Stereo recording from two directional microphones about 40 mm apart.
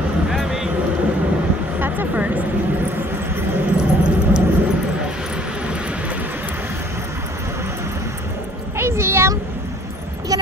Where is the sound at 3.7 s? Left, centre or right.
Right.